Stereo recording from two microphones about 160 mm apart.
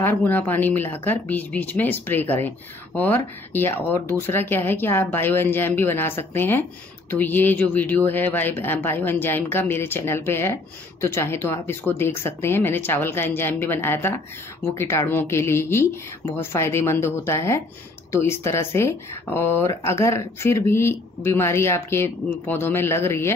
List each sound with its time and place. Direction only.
0.0 s speech: 10° left (ahead or behind)